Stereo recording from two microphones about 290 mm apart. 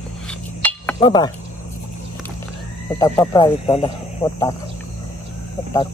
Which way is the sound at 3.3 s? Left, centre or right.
Centre.